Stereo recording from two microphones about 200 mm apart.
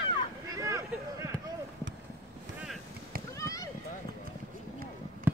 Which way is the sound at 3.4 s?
15° left (ahead or behind).